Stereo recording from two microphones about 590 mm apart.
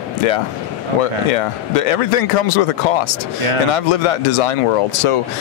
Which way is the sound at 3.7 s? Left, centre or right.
Left.